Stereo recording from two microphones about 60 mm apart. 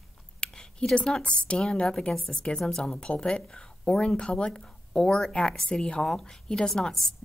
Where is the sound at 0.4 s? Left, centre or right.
Centre.